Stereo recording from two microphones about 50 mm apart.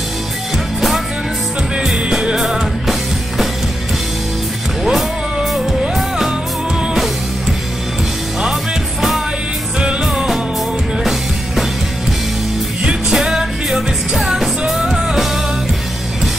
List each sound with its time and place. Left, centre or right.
0.7 s music: centre
4.8 s music: centre
9.8 s music: centre
13.1 s music: centre